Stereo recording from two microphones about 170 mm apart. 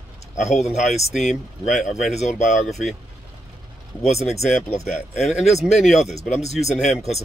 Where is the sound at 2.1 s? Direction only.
45° left (ahead or behind).